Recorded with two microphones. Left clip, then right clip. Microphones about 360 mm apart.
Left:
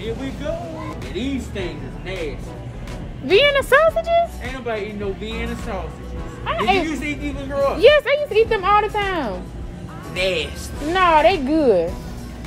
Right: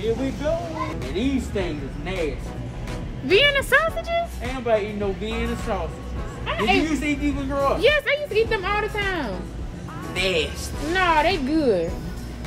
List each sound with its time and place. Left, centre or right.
0.5 s speech: centre
3.3 s speech: centre
4.5 s speech: centre
6.4 s speech: centre
6.9 s speech: centre
7.8 s speech: centre
10.1 s speech: centre
10.9 s speech: centre